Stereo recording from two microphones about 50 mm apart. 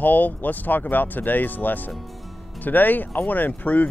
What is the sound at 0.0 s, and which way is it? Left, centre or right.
Speech, left.